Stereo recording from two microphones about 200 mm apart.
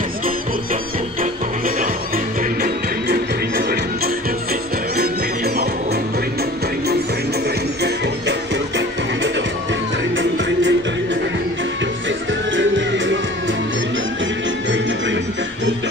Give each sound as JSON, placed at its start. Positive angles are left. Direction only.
{"t": 2.6, "sound": "music", "side_deg": -45}
{"t": 7.8, "sound": "music", "side_deg": -60}
{"t": 12.5, "sound": "music", "side_deg": -65}